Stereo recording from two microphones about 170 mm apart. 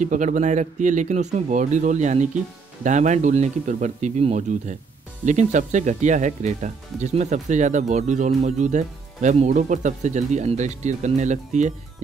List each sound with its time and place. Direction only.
0.0 s speech: 50° right (ahead or behind)